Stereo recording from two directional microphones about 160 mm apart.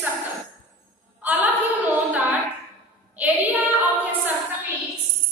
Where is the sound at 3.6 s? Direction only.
10° right (ahead or behind).